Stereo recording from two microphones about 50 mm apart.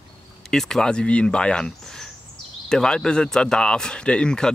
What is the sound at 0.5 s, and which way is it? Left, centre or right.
Speech, centre.